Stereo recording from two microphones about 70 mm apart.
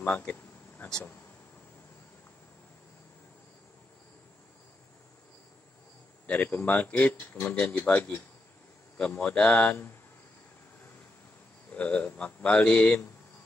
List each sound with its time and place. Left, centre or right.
0.0 s a sound: centre
6.2 s speech: left
9.2 s speech: centre
11.7 s speech: left